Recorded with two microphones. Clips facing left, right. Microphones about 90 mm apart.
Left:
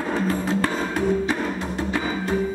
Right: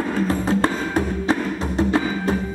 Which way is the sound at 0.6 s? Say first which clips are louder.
Right 2 dB; 30° right (ahead or behind).